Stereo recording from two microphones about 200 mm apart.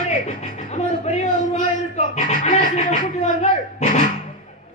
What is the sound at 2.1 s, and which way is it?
Music, 35° left (ahead or behind).